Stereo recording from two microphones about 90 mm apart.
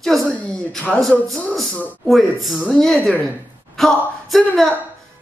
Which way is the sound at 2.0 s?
Centre (ahead or behind).